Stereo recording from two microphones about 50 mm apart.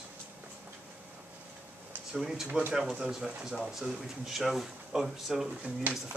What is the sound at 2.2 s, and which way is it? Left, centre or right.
Speech, centre.